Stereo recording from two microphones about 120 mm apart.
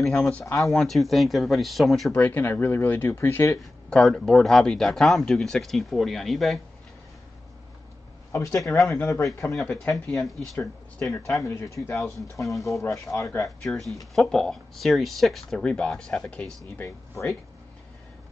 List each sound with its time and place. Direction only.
0.0 s speech: 5° left (ahead or behind)
2.1 s speech: 15° left (ahead or behind)
3.9 s speech: 5° left (ahead or behind)
8.3 s speech: 25° left (ahead or behind)
9.7 s speech: 10° left (ahead or behind)
11.1 s speech: 25° left (ahead or behind)
13.6 s speech: centre (ahead or behind)
16.7 s speech: 20° left (ahead or behind)